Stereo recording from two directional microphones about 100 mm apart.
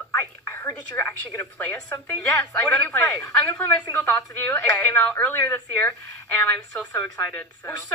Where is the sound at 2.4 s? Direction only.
10° left (ahead or behind).